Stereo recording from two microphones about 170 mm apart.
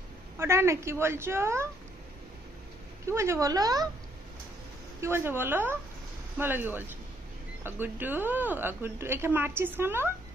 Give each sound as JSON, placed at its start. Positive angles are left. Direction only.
{"t": 0.4, "sound": "a woman's voice", "side_deg": -15}
{"t": 3.1, "sound": "speech", "side_deg": -15}
{"t": 5.0, "sound": "a woman's voice", "side_deg": -15}